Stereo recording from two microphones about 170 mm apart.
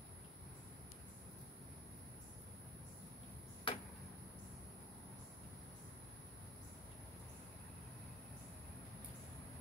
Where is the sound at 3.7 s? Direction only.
30° left (ahead or behind).